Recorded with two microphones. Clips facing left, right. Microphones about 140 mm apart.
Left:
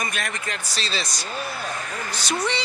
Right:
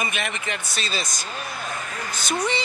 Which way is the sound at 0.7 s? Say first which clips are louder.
Even; 50° right (ahead or behind).